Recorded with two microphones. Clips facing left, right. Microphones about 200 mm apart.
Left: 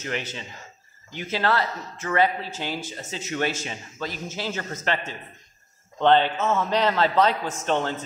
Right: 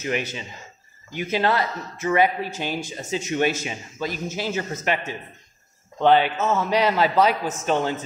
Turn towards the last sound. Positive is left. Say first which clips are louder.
# right 2 dB
turn(degrees=-5)  # may be behind; listen again after turning